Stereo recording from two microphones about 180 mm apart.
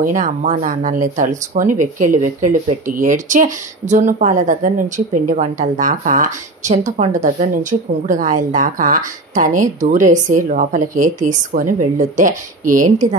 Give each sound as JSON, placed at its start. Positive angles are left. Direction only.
{"t": 0.0, "sound": "speech", "side_deg": -45}